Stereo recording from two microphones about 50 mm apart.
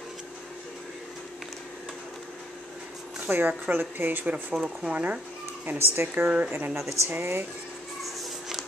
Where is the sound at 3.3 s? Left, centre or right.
Right.